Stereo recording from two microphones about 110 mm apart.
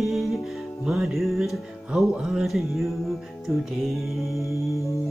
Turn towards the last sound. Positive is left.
turn(degrees=30)  # may be behind; listen again after turning